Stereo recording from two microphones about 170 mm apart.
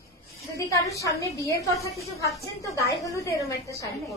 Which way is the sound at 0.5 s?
20° left (ahead or behind).